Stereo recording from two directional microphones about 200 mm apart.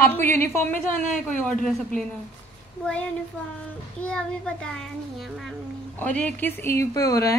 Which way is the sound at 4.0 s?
5° left (ahead or behind).